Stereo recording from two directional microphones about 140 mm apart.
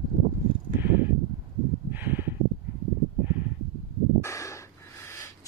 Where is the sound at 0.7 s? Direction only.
15° right (ahead or behind).